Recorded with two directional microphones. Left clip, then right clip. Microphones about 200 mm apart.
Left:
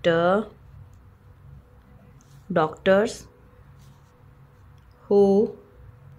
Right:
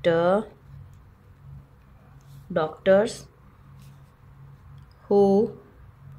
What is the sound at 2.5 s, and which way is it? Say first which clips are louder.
Speech: left 2 dB; 25° left (ahead or behind).